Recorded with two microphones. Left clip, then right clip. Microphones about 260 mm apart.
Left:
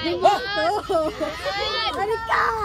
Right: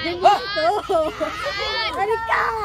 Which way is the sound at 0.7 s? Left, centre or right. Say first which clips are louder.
Right 2 dB; right.